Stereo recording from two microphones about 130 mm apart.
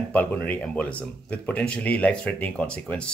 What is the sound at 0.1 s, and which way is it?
Speech, 10° left (ahead or behind).